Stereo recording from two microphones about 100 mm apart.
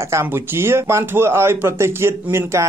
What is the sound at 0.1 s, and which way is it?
Speech, 25° right (ahead or behind).